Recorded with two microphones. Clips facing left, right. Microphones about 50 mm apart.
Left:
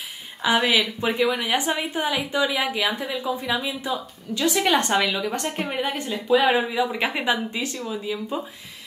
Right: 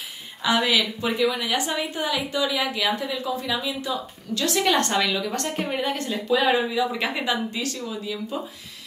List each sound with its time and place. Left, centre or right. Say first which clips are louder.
0.4 s a woman's voice: left 1 dB; centre